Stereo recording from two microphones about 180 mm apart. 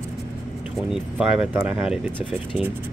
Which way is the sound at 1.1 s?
5° right (ahead or behind).